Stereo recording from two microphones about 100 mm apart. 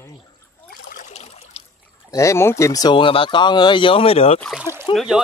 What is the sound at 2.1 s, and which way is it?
Speech, 30° left (ahead or behind).